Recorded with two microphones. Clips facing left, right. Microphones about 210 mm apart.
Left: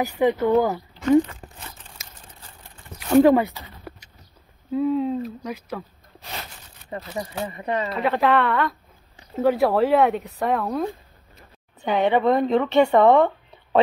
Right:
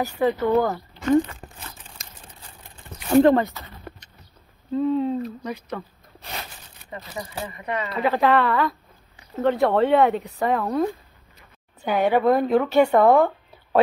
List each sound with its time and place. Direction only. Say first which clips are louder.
0.0 s speech: left 2 dB; 15° left (ahead or behind)
2.0 s a sound: right 1 dB; 5° left (ahead or behind)
4.7 s speech: even; centre (ahead or behind)
7.4 s speech: left 3 dB; 30° left (ahead or behind)
7.9 s speech: right 1 dB; centre (ahead or behind)